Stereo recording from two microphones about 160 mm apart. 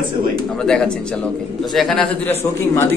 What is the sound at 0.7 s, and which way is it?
A man's voice, 5° left (ahead or behind).